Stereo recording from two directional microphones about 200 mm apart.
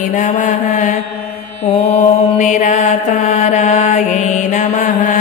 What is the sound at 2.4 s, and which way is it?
Mantra, 40° left (ahead or behind).